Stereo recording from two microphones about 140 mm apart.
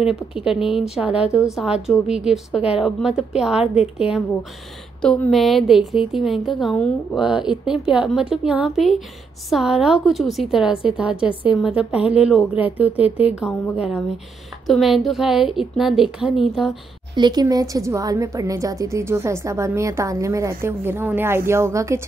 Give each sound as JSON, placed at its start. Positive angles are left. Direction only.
{"t": 0.0, "sound": "a woman's voice", "side_deg": -5}
{"t": 1.3, "sound": "speech", "side_deg": 20}
{"t": 1.6, "sound": "a woman's voice", "side_deg": -5}
{"t": 5.0, "sound": "a woman's voice", "side_deg": 5}
{"t": 7.2, "sound": "a woman's voice", "side_deg": -5}
{"t": 14.7, "sound": "a woman's voice", "side_deg": 0}
{"t": 17.1, "sound": "a woman's voice", "side_deg": -30}